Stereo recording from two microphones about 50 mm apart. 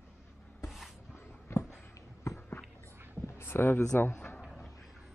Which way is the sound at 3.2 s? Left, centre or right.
Left.